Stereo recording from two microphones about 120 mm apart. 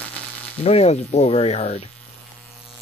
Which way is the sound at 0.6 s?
60° left (ahead or behind).